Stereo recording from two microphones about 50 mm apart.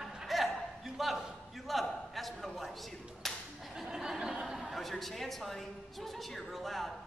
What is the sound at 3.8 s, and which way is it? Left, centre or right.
Chuckle, centre.